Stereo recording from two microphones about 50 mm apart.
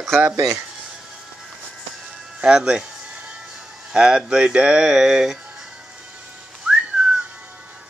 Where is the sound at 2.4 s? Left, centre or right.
Centre.